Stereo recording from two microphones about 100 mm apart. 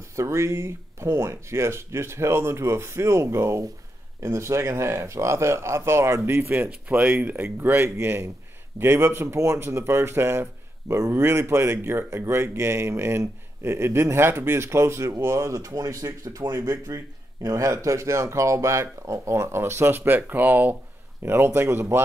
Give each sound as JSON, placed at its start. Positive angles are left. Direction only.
{"t": 0.1, "sound": "speech", "side_deg": -30}